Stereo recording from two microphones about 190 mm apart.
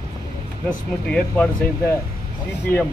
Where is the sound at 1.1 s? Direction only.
5° left (ahead or behind).